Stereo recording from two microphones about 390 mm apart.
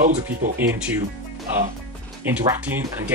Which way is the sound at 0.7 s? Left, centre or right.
Centre.